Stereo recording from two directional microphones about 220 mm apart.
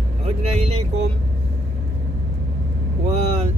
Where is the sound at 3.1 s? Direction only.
30° right (ahead or behind).